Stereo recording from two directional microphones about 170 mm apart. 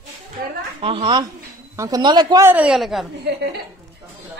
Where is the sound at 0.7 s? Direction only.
35° right (ahead or behind).